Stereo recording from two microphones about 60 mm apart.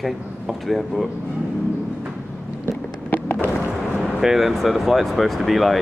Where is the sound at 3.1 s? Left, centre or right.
Left.